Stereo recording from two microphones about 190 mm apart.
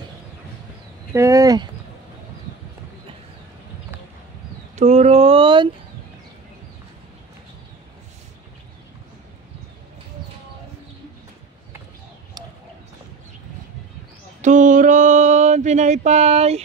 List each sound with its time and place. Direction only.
1.1 s speech: 15° right (ahead or behind)
4.7 s speech: 35° right (ahead or behind)
14.4 s mantra: 40° right (ahead or behind)